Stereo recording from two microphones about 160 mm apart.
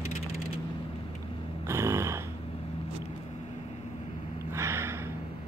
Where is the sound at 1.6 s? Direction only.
15° right (ahead or behind).